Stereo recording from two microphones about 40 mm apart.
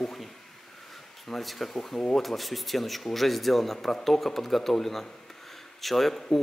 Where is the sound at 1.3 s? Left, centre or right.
Centre.